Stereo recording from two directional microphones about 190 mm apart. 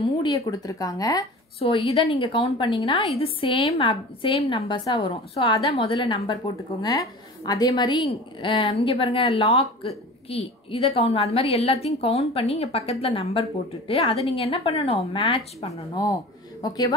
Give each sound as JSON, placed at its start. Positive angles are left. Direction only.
{"t": 0.5, "sound": "speech", "side_deg": 20}
{"t": 1.6, "sound": "a woman's voice", "side_deg": 30}